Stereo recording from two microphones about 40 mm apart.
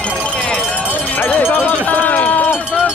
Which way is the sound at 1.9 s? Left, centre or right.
Left.